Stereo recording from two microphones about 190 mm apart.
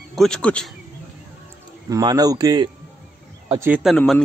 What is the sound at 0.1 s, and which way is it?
Speech, 5° left (ahead or behind).